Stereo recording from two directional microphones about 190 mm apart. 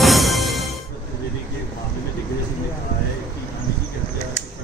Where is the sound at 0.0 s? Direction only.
Centre (ahead or behind).